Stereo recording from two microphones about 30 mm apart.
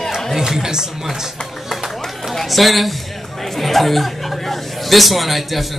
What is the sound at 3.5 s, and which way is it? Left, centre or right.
Chuckle, centre.